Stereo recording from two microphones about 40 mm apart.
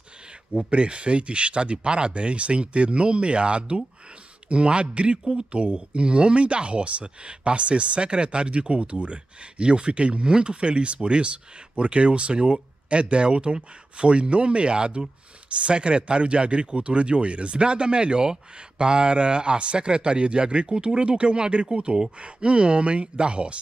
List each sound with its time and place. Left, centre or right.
0.7 s speech: right
5.2 s speech: centre
5.5 s speech: right